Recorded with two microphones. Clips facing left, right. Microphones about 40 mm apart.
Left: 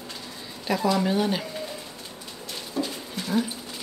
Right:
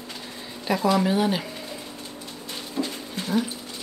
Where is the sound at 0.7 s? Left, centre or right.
Centre.